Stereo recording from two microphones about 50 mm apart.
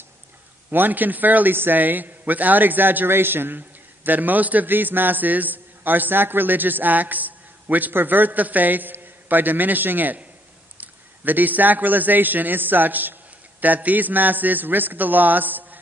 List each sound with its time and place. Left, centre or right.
0.7 s a man's voice: right